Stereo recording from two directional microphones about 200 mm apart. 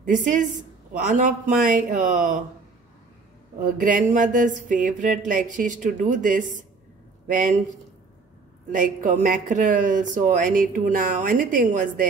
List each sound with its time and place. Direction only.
0.0 s speech: 40° right (ahead or behind)
3.6 s speech: 40° right (ahead or behind)
8.7 s speech: 40° right (ahead or behind)